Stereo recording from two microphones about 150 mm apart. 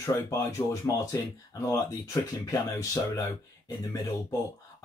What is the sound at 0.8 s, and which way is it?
Speech, 20° left (ahead or behind).